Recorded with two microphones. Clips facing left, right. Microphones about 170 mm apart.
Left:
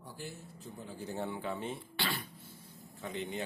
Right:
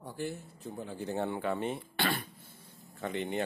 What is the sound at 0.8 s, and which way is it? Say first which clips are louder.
Speech: right 4 dB; 65° right (ahead or behind).